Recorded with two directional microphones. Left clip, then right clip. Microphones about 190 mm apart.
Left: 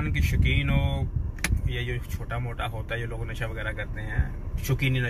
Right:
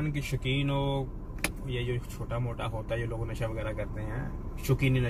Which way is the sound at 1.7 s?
15° right (ahead or behind).